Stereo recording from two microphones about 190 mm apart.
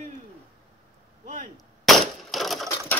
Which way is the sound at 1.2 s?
45° right (ahead or behind).